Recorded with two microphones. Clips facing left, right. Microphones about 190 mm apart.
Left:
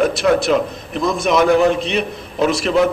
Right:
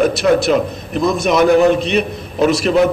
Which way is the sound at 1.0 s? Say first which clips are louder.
Right 2 dB; 40° right (ahead or behind).